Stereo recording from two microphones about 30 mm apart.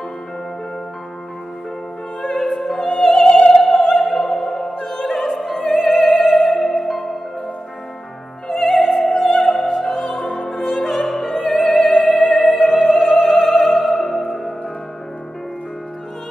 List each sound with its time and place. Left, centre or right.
2.2 s music: centre
3.3 s opera: left
3.9 s opera: centre
8.5 s music: centre
9.4 s opera: centre
10.2 s opera: left
10.5 s opera: centre
11.5 s music: centre
13.0 s music: centre